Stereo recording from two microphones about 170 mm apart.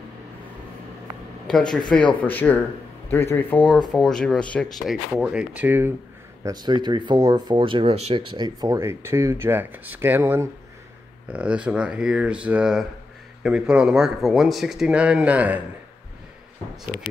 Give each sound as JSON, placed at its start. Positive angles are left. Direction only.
{"t": 1.5, "sound": "speech", "side_deg": 5}
{"t": 6.4, "sound": "speech", "side_deg": -25}